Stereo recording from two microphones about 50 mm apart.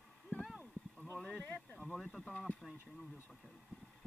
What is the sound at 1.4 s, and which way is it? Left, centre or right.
Speech, left.